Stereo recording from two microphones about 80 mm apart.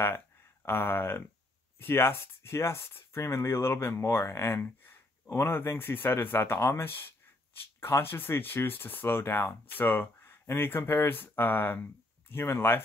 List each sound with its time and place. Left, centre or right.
0.7 s speech: left